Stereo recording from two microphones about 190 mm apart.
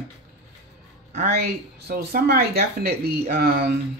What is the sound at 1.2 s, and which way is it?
Speech, 55° right (ahead or behind).